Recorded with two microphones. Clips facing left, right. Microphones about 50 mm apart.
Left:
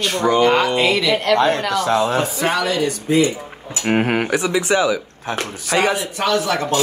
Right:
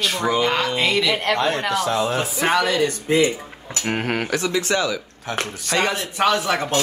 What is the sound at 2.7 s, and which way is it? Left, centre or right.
Speech, right.